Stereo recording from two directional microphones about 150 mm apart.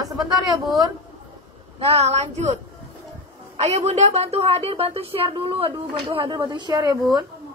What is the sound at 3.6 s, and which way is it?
A woman's voice, 45° right (ahead or behind).